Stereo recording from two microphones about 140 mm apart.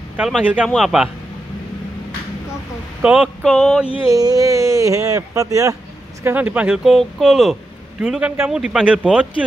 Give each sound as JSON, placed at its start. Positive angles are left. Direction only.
{"t": 0.2, "sound": "a man's voice", "side_deg": -5}
{"t": 3.0, "sound": "speech", "side_deg": -10}
{"t": 4.1, "sound": "speech", "side_deg": -25}
{"t": 6.2, "sound": "a man's voice", "side_deg": -10}